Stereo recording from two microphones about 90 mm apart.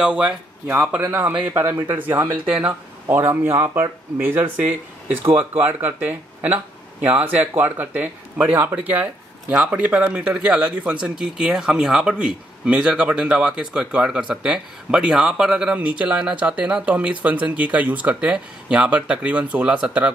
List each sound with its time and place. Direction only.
0.0 s speech: 10° right (ahead or behind)
2.4 s speech: 10° right (ahead or behind)
3.1 s speech: 25° right (ahead or behind)